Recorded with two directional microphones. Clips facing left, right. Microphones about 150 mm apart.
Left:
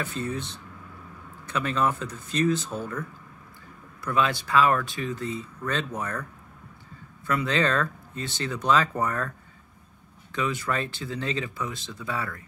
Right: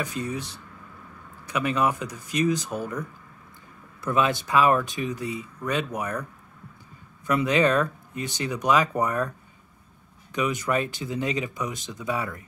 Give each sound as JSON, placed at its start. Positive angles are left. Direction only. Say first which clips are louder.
{"t": 0.0, "sound": "speech", "louder": "right 1 dB", "side_deg": -15}
{"t": 7.2, "sound": "speech", "louder": "right 4 dB", "side_deg": -15}
{"t": 10.3, "sound": "speech", "louder": "right 3 dB", "side_deg": -20}